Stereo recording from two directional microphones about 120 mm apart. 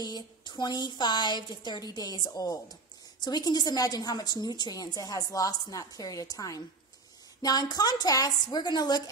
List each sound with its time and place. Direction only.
0.0 s a woman's voice: 35° left (ahead or behind)